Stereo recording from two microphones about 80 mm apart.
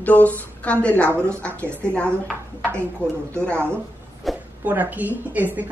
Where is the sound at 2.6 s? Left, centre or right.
Right.